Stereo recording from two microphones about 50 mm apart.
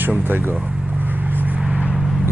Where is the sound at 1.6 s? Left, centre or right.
Right.